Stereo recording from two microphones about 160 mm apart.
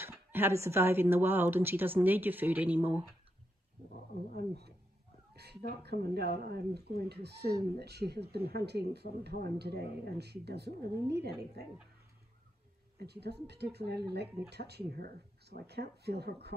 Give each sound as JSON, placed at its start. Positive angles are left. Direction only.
{"t": 0.0, "sound": "speech", "side_deg": -15}
{"t": 4.4, "sound": "speech", "side_deg": -90}
{"t": 13.0, "sound": "speech", "side_deg": -90}